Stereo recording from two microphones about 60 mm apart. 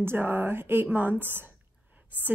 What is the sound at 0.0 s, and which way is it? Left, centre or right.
Speech, right.